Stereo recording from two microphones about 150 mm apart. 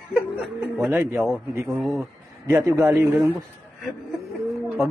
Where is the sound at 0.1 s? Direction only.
5° right (ahead or behind).